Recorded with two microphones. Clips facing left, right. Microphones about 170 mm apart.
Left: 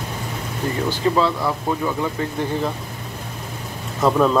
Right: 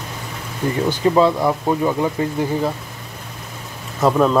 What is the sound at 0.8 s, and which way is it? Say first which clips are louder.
Speech: right 4 dB; 15° right (ahead or behind).